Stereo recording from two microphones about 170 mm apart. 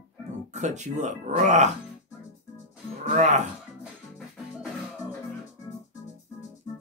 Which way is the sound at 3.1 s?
45° right (ahead or behind).